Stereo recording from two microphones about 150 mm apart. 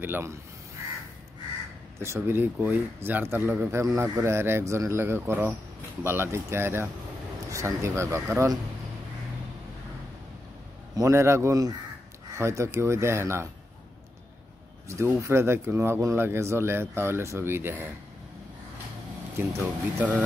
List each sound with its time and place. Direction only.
0.0 s speech: 15° right (ahead or behind)
2.0 s speech: 15° right (ahead or behind)
11.0 s speech: 20° right (ahead or behind)
14.9 s speech: 20° right (ahead or behind)
19.3 s speech: 15° right (ahead or behind)